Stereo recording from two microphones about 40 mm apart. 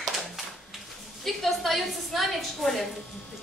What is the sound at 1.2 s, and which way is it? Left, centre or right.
A woman's voice, centre.